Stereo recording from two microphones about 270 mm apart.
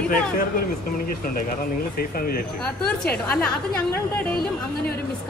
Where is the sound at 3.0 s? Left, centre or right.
Centre.